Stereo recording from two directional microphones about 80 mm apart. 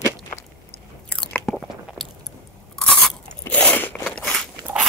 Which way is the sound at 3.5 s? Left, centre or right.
Left.